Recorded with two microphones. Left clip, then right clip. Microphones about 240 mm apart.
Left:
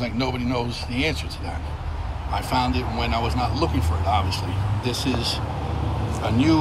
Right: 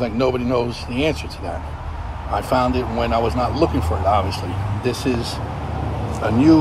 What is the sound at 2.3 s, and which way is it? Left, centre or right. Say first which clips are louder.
Speech: right 5 dB; right.